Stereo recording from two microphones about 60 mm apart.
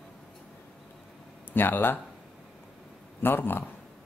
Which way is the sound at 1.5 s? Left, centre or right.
Left.